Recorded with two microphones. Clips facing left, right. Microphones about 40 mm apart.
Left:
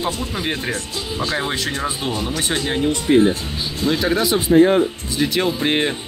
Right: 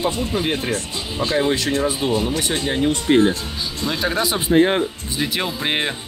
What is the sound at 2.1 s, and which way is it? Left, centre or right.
Speech, centre.